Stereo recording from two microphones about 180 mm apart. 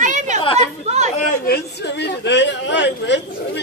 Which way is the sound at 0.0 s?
40° right (ahead or behind).